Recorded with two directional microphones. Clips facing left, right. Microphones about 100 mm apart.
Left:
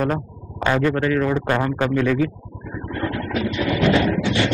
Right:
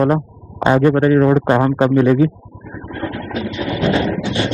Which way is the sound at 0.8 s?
20° right (ahead or behind).